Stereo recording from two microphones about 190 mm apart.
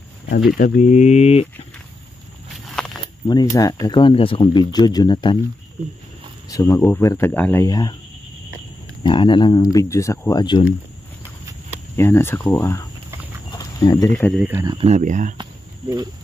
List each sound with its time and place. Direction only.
0.6 s speech: 40° left (ahead or behind)
2.5 s walk: centre (ahead or behind)
3.3 s speech: 20° left (ahead or behind)
6.5 s speech: 15° left (ahead or behind)
9.0 s speech: 25° left (ahead or behind)
12.0 s speech: 10° left (ahead or behind)
13.5 s a sound: 20° left (ahead or behind)
14.1 s speech: 5° left (ahead or behind)
14.4 s speech: 15° right (ahead or behind)
14.8 s speech: 35° right (ahead or behind)